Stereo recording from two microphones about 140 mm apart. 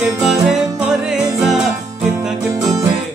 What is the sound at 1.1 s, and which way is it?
Music, 5° right (ahead or behind).